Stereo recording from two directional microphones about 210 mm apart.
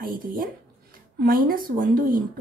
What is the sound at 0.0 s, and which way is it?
A woman's voice, 45° right (ahead or behind).